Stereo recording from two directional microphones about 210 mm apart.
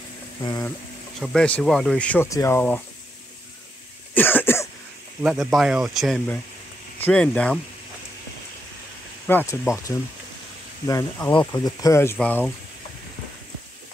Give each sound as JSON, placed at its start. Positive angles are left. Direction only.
{"t": 0.4, "sound": "speech", "side_deg": 20}
{"t": 1.2, "sound": "speech", "side_deg": 5}
{"t": 4.1, "sound": "cough", "side_deg": 10}
{"t": 5.2, "sound": "speech", "side_deg": -5}
{"t": 9.3, "sound": "speech", "side_deg": 10}